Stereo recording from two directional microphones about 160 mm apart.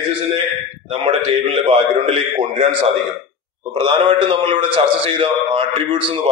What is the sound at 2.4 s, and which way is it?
A man's voice, 40° right (ahead or behind).